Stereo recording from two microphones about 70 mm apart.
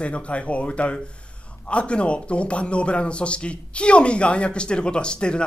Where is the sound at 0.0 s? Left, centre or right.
Centre.